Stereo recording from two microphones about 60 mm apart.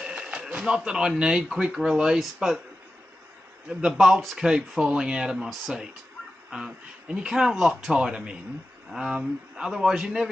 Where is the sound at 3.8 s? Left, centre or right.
Centre.